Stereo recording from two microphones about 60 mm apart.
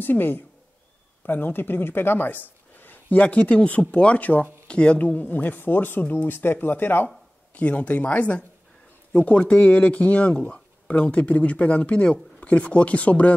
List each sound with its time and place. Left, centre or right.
0.0 s speech: left
7.5 s speech: left